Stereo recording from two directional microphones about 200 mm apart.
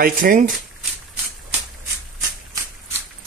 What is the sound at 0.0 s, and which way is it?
Speech, 45° right (ahead or behind).